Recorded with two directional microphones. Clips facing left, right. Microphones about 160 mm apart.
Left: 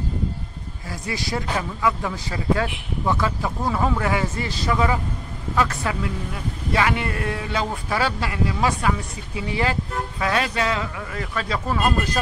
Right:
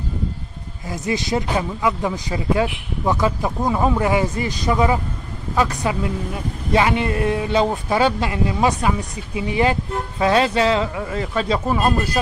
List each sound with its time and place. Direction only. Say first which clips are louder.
0.8 s a man's voice: right 6 dB; 20° right (ahead or behind)